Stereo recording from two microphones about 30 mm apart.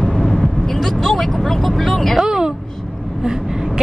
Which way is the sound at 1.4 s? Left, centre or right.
Centre.